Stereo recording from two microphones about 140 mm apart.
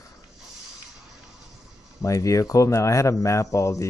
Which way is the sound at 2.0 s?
20° left (ahead or behind).